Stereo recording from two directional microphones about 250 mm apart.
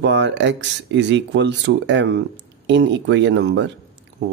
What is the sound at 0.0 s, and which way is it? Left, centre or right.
Speech, right.